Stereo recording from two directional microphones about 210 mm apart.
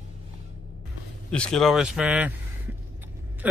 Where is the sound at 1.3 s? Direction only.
5° left (ahead or behind).